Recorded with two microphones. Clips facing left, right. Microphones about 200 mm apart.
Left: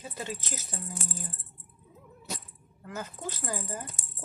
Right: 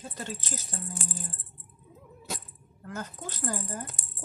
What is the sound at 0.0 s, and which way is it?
Speech, 10° left (ahead or behind).